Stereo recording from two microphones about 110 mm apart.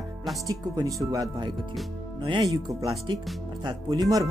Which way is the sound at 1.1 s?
40° right (ahead or behind).